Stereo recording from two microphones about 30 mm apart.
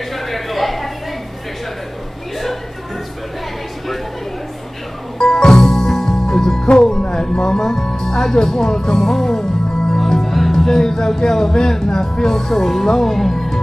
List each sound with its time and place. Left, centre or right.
0.1 s a sound: centre
5.2 s music: left
9.9 s music: centre
10.3 s speech: centre